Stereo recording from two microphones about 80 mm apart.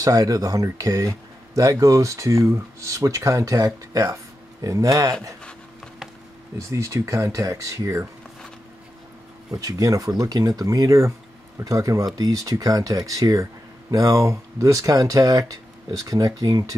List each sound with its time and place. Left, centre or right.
0.0 s speech: right
6.7 s speech: right
9.5 s speech: right